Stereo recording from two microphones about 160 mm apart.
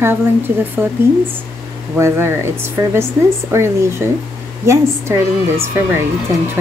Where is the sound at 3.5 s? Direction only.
15° right (ahead or behind).